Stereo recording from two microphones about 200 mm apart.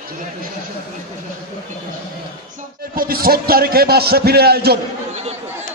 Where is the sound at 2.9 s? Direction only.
45° right (ahead or behind).